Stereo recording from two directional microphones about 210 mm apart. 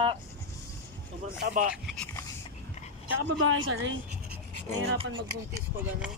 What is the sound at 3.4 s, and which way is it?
Speech, 70° right (ahead or behind).